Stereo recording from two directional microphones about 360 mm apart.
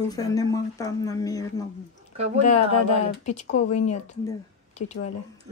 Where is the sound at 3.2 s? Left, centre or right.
Centre.